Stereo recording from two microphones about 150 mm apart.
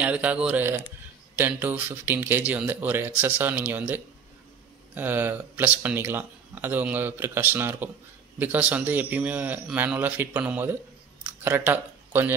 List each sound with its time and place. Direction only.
0.0 s speech: 10° right (ahead or behind)